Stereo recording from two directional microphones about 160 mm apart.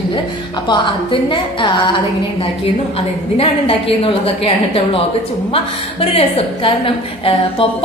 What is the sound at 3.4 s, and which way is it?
A woman's voice, 35° left (ahead or behind).